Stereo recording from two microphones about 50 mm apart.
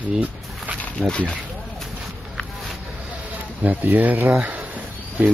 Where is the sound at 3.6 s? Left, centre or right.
Right.